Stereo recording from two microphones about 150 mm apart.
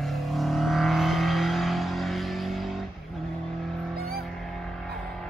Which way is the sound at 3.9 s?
90° right.